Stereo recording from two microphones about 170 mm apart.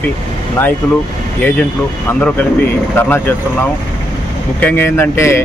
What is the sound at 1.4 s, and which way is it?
Speech, 10° left (ahead or behind).